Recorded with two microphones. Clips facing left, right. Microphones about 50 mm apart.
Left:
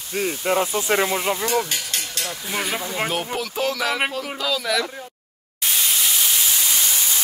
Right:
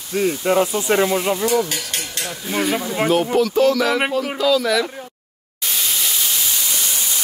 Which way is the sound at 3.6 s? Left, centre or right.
Centre.